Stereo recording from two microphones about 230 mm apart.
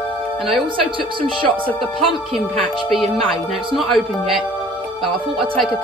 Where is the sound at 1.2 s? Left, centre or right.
Right.